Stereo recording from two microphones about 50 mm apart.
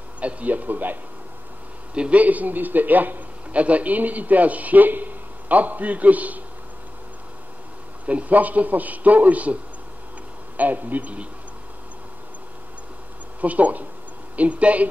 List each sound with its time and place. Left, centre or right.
0.2 s a man's voice: right
2.0 s a man's voice: right
8.1 s a man's voice: right
10.6 s a man's voice: right
13.4 s a man's voice: right